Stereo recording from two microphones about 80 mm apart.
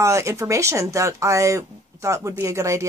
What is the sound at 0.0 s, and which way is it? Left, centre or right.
Speech, right.